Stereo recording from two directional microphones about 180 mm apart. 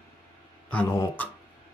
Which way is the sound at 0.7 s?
10° left (ahead or behind).